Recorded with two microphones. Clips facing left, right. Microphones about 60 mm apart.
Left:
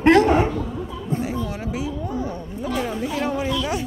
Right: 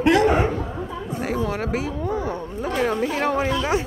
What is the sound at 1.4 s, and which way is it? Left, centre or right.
Speech, right.